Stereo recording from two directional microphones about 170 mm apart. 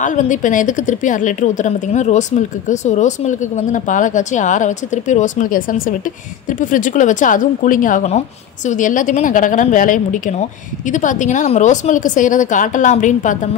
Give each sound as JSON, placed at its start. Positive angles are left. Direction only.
{"t": 0.0, "sound": "a woman's voice", "side_deg": 50}